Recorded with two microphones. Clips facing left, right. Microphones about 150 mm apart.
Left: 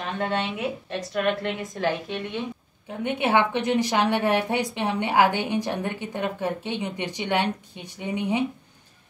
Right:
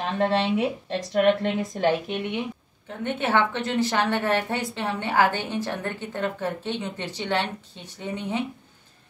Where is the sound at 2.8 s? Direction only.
15° left (ahead or behind).